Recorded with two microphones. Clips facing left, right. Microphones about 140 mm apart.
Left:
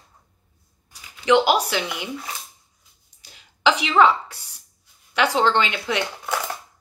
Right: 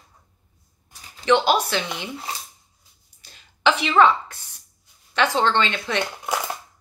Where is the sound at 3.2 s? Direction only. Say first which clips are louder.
Even; 15° left (ahead or behind).